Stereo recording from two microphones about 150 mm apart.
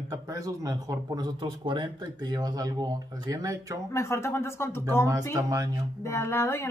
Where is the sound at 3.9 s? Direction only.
15° left (ahead or behind).